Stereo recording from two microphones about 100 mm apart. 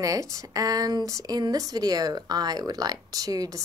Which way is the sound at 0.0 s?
35° right (ahead or behind).